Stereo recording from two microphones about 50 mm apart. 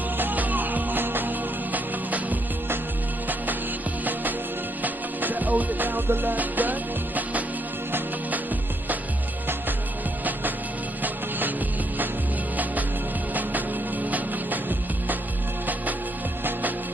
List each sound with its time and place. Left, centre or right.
0.2 s music: right
4.8 s music: right
11.0 s music: right
14.1 s music: right